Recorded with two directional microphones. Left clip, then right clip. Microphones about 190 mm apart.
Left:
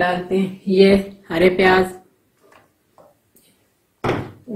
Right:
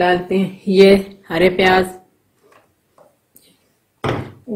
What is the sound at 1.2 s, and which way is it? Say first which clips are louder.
Speech: right 1 dB; 30° right (ahead or behind).